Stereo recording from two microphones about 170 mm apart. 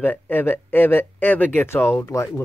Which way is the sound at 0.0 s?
10° left (ahead or behind).